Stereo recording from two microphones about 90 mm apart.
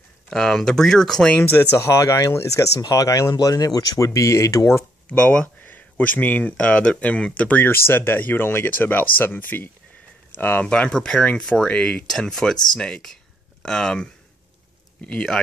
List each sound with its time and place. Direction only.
0.3 s speech: 5° left (ahead or behind)
1.3 s speech: 20° left (ahead or behind)
5.0 s speech: 15° left (ahead or behind)
15.0 s speech: 10° left (ahead or behind)